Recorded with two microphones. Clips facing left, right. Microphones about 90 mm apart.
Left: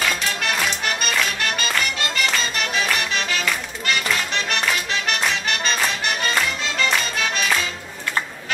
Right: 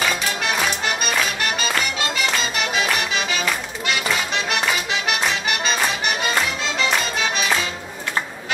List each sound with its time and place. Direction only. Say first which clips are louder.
0.0 s music: right 1 dB; 5° right (ahead or behind)